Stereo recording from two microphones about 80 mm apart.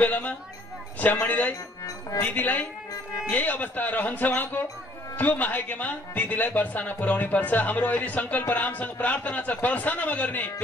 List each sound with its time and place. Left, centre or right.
0.0 s speech: centre